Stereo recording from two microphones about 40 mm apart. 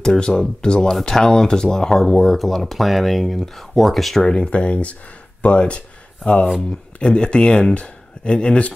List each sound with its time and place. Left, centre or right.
0.0 s speech: centre
0.9 s speech: centre
4.2 s speech: centre
4.5 s speech: left
7.0 s speech: left